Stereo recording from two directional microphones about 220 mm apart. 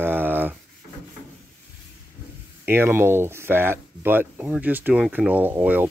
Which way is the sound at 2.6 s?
10° right (ahead or behind).